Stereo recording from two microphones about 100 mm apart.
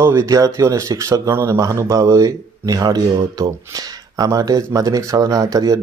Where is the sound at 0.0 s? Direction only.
25° right (ahead or behind).